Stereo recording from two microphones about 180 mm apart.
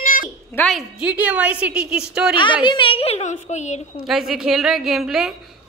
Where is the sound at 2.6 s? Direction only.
25° left (ahead or behind).